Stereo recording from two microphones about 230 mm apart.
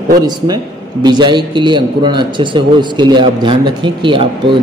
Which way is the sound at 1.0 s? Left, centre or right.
Centre.